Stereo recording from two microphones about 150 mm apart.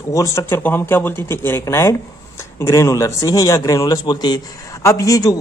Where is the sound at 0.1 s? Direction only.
20° left (ahead or behind).